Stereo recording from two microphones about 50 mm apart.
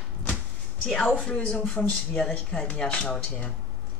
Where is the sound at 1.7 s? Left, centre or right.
Left.